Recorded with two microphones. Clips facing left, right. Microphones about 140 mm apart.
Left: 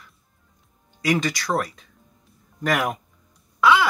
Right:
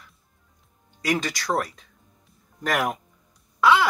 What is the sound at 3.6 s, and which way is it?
Wail, 30° right (ahead or behind).